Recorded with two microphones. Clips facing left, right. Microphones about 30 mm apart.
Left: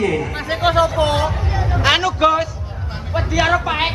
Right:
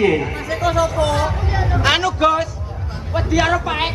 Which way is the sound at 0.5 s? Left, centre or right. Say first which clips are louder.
Left 3 dB; left.